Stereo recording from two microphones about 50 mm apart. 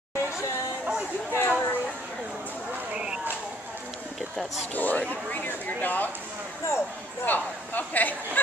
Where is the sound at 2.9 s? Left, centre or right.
Centre.